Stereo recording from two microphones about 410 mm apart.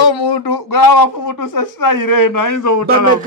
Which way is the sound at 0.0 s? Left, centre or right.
Left.